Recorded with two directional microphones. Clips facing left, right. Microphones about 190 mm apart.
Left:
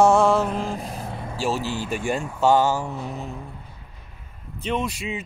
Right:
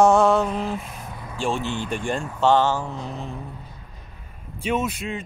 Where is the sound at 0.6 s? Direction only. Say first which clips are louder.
Even; 40° left (ahead or behind).